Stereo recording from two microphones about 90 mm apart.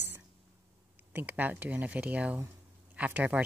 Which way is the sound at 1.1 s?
20° right (ahead or behind).